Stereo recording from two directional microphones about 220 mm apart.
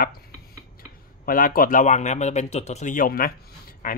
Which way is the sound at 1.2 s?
40° left (ahead or behind).